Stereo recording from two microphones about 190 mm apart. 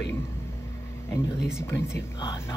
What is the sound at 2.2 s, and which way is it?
Speech, 25° left (ahead or behind).